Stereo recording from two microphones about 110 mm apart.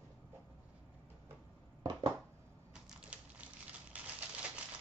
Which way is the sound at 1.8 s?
40° right (ahead or behind).